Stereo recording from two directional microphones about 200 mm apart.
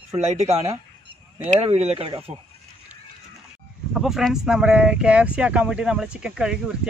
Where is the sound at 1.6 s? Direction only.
30° right (ahead or behind).